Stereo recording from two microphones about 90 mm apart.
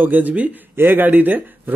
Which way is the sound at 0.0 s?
20° right (ahead or behind).